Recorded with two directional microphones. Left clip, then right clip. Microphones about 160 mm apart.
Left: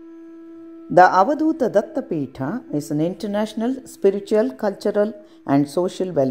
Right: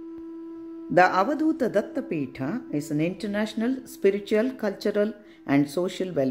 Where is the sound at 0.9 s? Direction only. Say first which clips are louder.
Left 7 dB; 20° left (ahead or behind).